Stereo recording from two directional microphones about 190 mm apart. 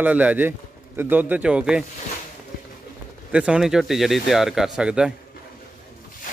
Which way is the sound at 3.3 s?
5° right (ahead or behind).